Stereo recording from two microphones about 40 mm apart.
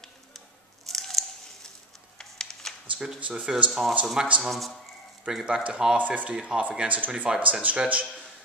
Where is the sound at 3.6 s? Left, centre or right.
Centre.